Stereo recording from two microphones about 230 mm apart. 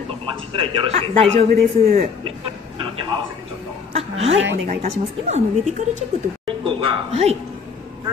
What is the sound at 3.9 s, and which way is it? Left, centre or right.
A woman's voice, right.